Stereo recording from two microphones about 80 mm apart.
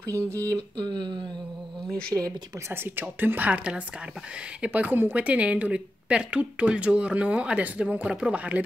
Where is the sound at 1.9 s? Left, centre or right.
Centre.